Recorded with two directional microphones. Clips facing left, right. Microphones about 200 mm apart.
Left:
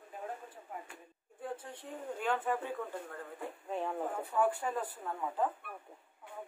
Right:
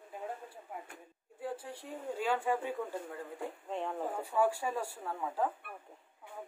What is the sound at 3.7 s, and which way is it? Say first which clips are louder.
Speech: left 1 dB; centre (ahead or behind).